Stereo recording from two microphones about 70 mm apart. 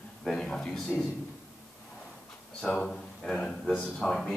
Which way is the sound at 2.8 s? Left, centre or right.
Centre.